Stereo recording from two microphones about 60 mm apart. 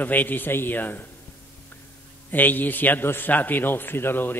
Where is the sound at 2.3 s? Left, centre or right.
Left.